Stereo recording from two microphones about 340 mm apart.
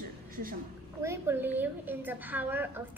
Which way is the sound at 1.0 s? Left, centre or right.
Centre.